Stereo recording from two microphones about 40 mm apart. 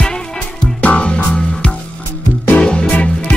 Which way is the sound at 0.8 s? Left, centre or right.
Left.